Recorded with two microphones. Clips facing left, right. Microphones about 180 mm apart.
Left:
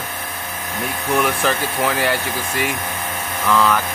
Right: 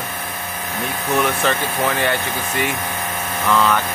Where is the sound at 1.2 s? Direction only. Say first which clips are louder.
Even; 5° left (ahead or behind).